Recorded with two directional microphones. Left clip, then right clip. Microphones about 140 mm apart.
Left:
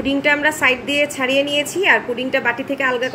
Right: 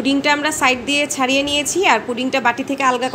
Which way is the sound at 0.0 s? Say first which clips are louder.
Even; 55° right (ahead or behind).